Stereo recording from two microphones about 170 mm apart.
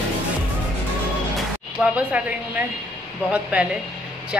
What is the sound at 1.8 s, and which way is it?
Speech, 5° right (ahead or behind).